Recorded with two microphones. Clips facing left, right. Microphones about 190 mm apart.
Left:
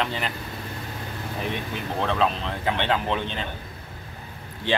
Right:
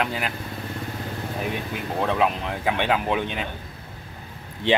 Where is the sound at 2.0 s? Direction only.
10° right (ahead or behind).